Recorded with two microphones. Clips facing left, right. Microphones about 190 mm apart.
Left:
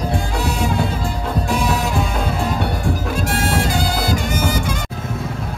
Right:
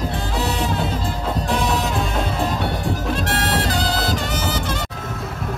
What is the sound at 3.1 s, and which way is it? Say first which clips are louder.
Music: left 2 dB; 50° left (ahead or behind).